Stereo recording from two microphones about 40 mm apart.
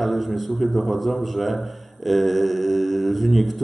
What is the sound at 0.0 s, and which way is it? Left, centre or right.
A man's voice, centre.